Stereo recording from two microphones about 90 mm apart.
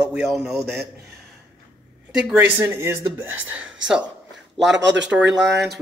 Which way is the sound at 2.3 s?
20° right (ahead or behind).